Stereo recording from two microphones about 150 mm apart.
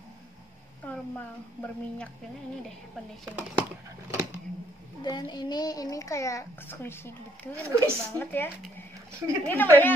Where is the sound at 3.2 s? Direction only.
10° right (ahead or behind).